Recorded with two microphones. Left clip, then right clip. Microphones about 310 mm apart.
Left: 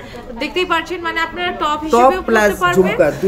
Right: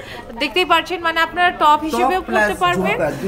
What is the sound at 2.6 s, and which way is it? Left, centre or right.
Speech, centre.